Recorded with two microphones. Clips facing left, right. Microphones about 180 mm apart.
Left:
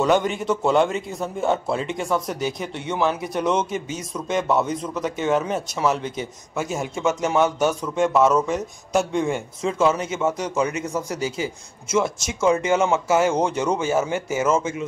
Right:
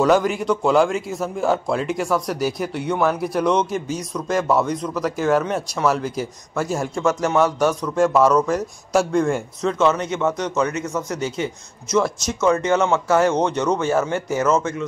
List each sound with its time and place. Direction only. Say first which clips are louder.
0.0 s a man's voice: right 3 dB; centre (ahead or behind)
10.9 s speech: right 1 dB; 30° left (ahead or behind)
11.1 s a man's voice: right 1 dB; 5° left (ahead or behind)